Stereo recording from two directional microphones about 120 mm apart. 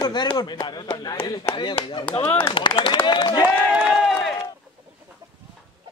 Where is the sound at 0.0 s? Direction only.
35° left (ahead or behind).